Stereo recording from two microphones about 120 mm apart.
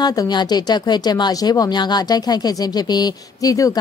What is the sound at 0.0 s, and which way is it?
Speech, 35° left (ahead or behind).